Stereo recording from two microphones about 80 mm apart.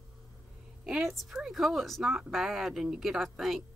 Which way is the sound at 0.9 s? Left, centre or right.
Centre.